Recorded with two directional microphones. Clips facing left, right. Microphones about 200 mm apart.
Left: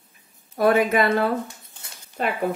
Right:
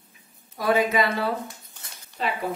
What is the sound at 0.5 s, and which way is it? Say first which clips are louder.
Speech: left 4 dB; 55° left (ahead or behind).